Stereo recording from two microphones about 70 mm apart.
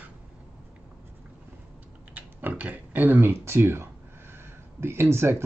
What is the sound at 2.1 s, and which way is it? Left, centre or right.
Speech, right.